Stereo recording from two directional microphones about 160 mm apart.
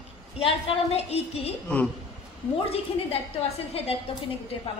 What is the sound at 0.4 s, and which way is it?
A woman's voice, 40° left (ahead or behind).